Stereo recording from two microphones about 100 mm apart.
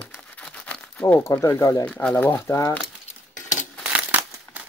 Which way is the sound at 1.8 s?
15° left (ahead or behind).